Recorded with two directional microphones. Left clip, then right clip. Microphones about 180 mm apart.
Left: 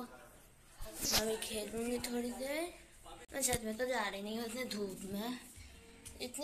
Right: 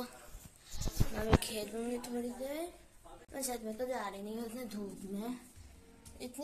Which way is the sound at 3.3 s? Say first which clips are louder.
Left 2 dB; 15° right (ahead or behind).